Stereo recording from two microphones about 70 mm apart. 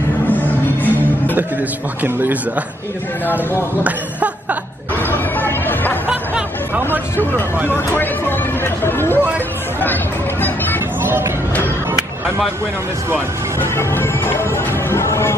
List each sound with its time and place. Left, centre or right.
0.3 s music: left
3.8 s speech: right
5.1 s chatter: left
6.0 s music: right
7.7 s speech: left
10.4 s music: left
11.0 s speech: right
13.6 s music: left